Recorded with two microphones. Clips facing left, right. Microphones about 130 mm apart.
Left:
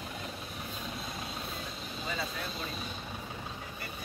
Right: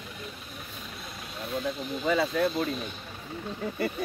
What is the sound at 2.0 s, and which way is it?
Speech, 65° right (ahead or behind).